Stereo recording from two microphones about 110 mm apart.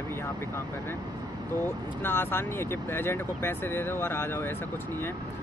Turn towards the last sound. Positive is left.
turn(degrees=25)  # may be behind; listen again after turning